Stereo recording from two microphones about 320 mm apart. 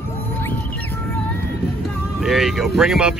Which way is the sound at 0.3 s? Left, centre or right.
Centre.